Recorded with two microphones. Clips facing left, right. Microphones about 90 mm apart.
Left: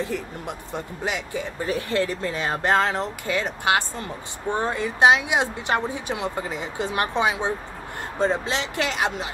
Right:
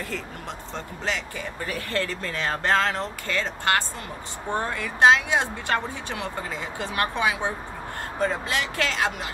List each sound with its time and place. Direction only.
0.0 s speech: 15° left (ahead or behind)